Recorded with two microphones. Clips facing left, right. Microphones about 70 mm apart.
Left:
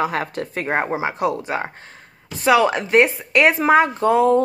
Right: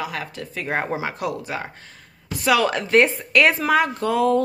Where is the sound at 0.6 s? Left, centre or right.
Left.